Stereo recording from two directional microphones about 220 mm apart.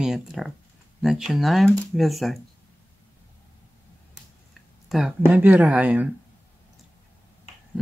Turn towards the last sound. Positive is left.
turn(degrees=-5)  # may be behind; listen again after turning